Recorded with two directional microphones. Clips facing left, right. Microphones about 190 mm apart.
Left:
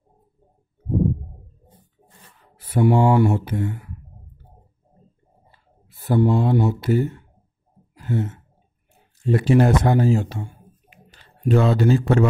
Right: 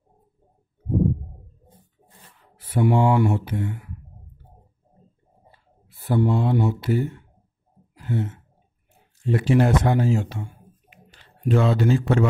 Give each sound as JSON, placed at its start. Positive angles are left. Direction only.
{"t": 2.5, "sound": "speech", "side_deg": 40}
{"t": 6.0, "sound": "speech", "side_deg": 40}
{"t": 7.9, "sound": "sigh", "side_deg": 40}
{"t": 9.2, "sound": "speech", "side_deg": 40}